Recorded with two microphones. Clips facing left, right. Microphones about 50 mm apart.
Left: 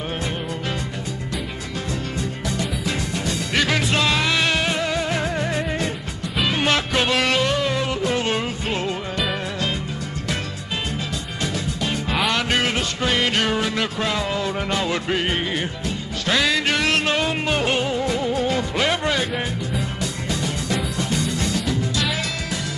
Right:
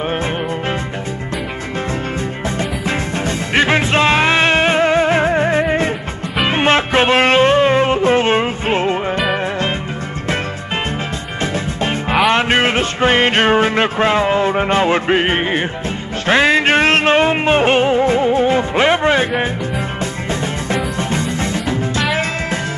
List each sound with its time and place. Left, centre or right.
2.5 s music: right
11.5 s music: right